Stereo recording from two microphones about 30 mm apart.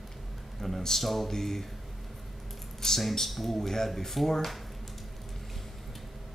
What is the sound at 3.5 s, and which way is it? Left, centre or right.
Speech, centre.